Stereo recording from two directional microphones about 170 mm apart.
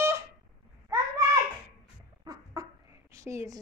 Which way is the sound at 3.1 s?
20° right (ahead or behind).